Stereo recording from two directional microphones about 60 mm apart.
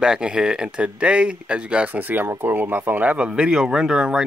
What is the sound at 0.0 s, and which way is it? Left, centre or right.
Speech, centre.